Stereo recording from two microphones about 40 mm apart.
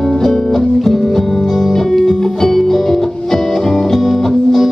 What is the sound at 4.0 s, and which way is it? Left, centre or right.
Music, centre.